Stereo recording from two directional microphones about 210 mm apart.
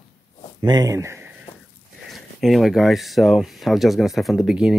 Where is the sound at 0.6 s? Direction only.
20° right (ahead or behind).